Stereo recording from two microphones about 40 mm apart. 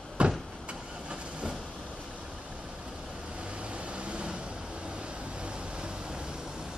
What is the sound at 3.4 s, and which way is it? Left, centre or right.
Vehicle, right.